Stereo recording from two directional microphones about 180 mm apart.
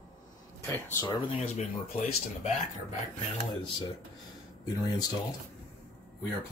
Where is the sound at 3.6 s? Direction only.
25° left (ahead or behind).